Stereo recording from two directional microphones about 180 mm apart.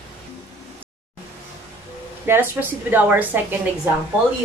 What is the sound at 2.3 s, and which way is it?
Speech, 10° right (ahead or behind).